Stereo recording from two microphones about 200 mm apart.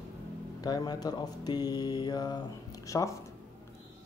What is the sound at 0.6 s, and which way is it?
Speech, 20° left (ahead or behind).